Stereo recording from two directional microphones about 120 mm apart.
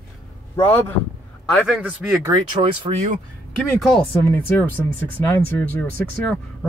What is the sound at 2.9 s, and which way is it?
Speech, 70° right (ahead or behind).